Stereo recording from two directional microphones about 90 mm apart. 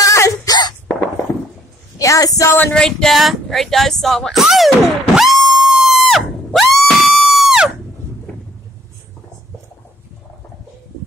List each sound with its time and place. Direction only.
0.0 s throat clearing: 35° left (ahead or behind)
2.0 s speech: 40° left (ahead or behind)
2.6 s a sound: 10° left (ahead or behind)
5.7 s music: centre (ahead or behind)